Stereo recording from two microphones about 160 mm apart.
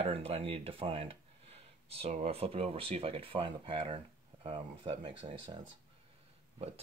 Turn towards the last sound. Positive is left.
turn(degrees=-35)  # may be behind; listen again after turning